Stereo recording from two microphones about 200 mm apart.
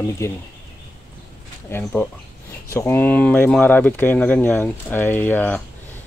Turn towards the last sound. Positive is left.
turn(degrees=10)  # may be behind; listen again after turning